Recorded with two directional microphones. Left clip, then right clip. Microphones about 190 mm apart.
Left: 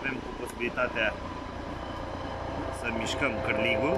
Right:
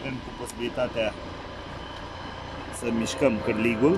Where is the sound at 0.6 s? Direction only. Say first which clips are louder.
Right 1 dB; 20° right (ahead or behind).